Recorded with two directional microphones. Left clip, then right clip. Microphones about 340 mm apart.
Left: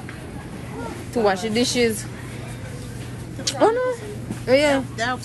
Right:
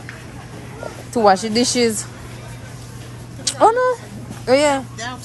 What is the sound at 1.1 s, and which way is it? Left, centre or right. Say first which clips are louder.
Speech: right 6 dB; centre.